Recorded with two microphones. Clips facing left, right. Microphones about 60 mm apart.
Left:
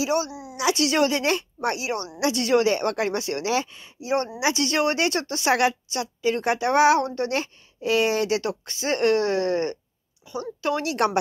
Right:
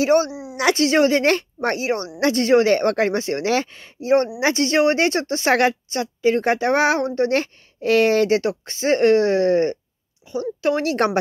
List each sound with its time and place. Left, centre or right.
0.0 s a woman's voice: right
0.3 s a sound: right
0.7 s speech: right
1.2 s a woman's voice: right
7.3 s speech: right